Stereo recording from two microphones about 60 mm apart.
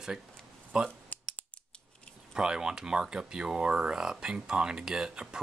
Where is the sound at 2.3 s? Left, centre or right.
Centre.